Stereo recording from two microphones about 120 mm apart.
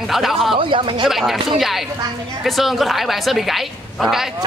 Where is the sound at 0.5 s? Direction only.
50° right (ahead or behind).